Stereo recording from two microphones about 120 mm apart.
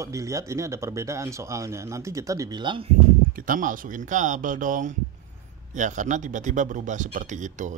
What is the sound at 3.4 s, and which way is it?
Speech, 90° right.